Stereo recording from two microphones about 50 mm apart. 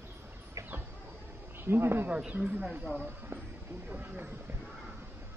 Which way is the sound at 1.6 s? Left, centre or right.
Right.